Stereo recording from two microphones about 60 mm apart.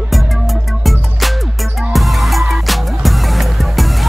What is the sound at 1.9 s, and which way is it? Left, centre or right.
Music, centre.